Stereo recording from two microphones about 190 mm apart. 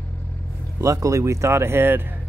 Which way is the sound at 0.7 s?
15° right (ahead or behind).